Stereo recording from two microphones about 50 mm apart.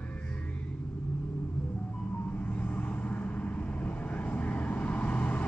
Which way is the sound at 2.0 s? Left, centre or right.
Left.